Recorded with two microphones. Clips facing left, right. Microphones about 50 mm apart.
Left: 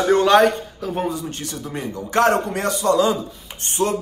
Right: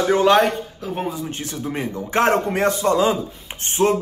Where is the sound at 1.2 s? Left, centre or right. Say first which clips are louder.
Right 2 dB; right.